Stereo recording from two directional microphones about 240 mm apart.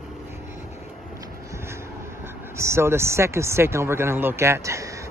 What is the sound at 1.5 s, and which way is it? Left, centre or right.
Speech, centre.